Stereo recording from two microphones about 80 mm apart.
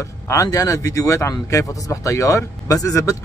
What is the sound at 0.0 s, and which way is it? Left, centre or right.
Speech, left.